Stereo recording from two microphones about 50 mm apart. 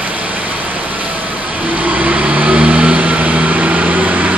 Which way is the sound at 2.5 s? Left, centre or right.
Right.